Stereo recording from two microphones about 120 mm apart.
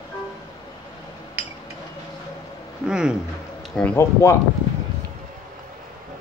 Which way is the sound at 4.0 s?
25° left (ahead or behind).